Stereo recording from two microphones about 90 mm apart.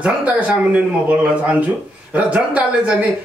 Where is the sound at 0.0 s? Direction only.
15° right (ahead or behind).